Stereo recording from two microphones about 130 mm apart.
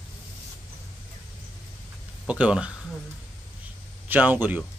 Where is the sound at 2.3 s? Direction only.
10° right (ahead or behind).